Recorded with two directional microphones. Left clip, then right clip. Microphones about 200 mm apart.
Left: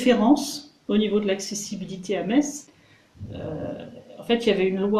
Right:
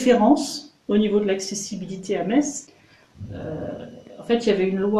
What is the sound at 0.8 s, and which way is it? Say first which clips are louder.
Speech: right 2 dB; 5° left (ahead or behind).